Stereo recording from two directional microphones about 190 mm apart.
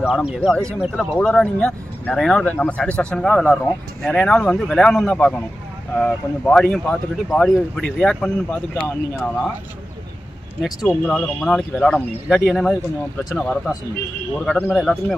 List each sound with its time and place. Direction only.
0.0 s speech: 5° right (ahead or behind)
10.9 s speech: 5° left (ahead or behind)